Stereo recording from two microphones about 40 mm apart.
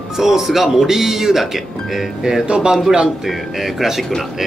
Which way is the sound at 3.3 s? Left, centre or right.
Centre.